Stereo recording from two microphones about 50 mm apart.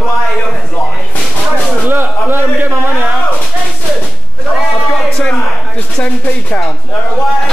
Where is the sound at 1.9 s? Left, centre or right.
Right.